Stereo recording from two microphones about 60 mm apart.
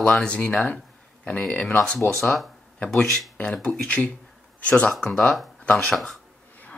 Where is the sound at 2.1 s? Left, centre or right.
Centre.